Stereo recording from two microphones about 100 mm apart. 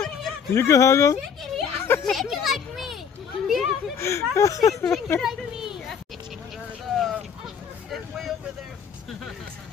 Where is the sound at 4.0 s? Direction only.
30° left (ahead or behind).